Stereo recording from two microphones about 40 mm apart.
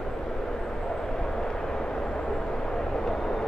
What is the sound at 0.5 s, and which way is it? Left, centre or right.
Vehicle, centre.